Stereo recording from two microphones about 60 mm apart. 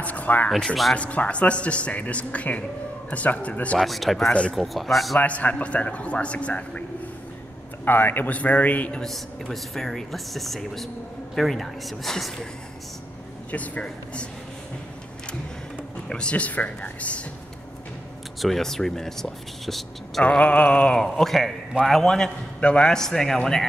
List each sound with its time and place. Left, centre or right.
0.0 s a sound: left
0.9 s speech: left
3.8 s speech: centre
4.3 s speech: centre
4.6 s speech: centre
5.2 s speech: left
7.8 s speech: left
9.0 s speech: centre
13.5 s speech: left
16.1 s speech: centre
18.4 s speech: centre
20.2 s speech: left